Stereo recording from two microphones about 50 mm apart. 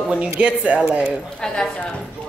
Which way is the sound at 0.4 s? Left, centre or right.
Right.